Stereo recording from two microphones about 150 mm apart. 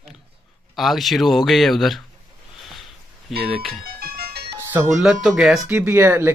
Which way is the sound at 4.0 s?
90° right.